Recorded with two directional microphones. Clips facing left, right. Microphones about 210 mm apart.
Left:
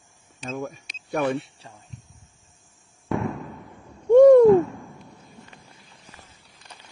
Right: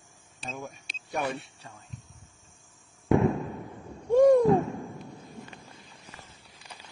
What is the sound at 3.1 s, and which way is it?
Fireworks, 25° right (ahead or behind).